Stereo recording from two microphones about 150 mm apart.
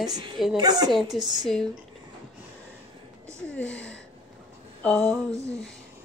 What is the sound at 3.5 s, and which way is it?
Speech, 5° left (ahead or behind).